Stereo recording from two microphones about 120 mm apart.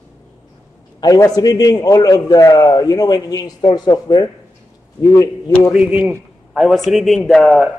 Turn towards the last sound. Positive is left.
turn(degrees=5)  # may be behind; listen again after turning